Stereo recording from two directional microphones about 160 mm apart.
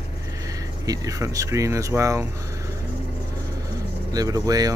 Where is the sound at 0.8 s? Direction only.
20° right (ahead or behind).